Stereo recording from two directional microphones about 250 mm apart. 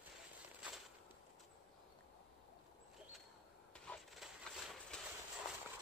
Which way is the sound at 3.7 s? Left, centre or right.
Centre.